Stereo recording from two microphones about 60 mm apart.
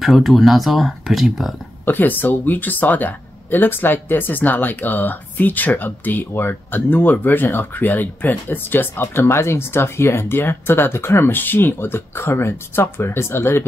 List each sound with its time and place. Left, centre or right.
0.0 s speech: centre
1.9 s speech: left